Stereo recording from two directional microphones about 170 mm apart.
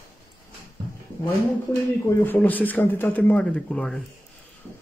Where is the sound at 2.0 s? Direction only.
10° left (ahead or behind).